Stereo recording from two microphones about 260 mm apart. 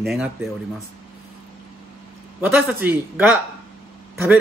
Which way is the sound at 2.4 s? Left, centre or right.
Centre.